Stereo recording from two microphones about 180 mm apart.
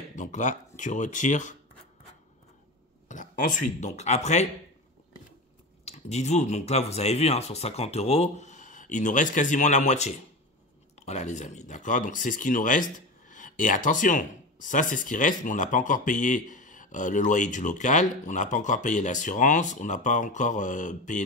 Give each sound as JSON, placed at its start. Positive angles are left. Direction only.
{"t": 0.1, "sound": "speech", "side_deg": 45}
{"t": 3.1, "sound": "speech", "side_deg": 45}
{"t": 5.9, "sound": "speech", "side_deg": 40}